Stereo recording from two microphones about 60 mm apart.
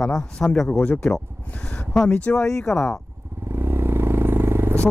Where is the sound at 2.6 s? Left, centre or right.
Centre.